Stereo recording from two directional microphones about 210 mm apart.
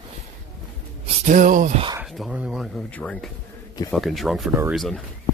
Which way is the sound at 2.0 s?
Centre (ahead or behind).